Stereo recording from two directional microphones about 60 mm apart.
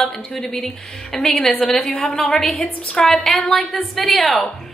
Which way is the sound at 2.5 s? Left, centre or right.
Left.